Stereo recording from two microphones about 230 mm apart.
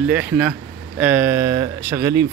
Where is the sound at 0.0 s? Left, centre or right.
Centre.